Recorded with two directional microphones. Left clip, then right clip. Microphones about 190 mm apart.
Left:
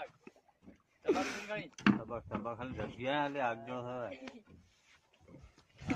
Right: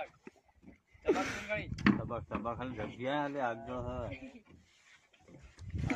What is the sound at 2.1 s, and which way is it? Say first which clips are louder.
Speech: right 2 dB; 40° right (ahead or behind).